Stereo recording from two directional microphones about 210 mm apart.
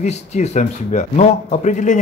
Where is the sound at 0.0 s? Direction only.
35° left (ahead or behind).